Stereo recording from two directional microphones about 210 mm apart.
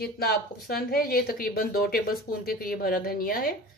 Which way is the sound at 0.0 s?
50° left (ahead or behind).